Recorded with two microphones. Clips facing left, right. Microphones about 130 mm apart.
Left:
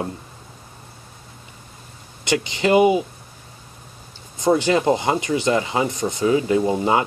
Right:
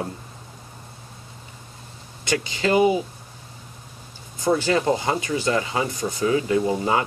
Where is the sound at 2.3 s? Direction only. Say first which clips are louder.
Left 3 dB; 20° left (ahead or behind).